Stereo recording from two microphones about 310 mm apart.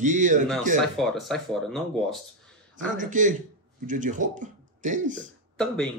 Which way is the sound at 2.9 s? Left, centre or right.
Right.